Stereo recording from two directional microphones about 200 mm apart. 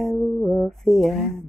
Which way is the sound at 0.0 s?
5° left (ahead or behind).